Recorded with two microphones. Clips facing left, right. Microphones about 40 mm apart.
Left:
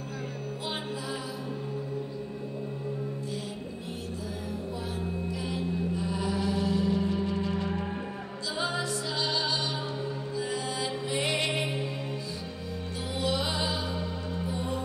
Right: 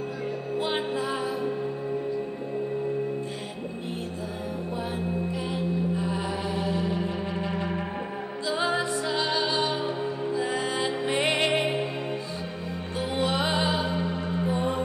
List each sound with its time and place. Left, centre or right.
4.9 s music: right
10.8 s music: right
13.1 s music: right